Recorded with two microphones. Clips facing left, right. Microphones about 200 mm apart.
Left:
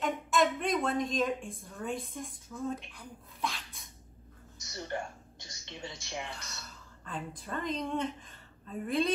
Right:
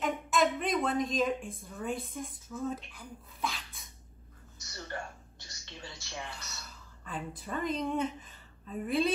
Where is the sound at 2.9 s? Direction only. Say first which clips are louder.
Right 1 dB; centre (ahead or behind).